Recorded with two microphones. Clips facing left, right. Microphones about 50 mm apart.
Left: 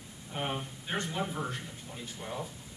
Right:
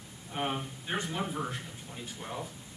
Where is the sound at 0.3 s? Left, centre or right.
Centre.